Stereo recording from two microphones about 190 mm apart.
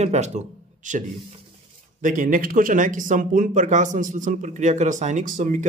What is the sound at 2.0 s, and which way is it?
Speech, 45° right (ahead or behind).